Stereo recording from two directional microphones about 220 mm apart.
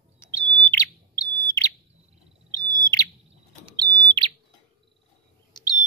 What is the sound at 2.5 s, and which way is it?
Owl, 15° left (ahead or behind).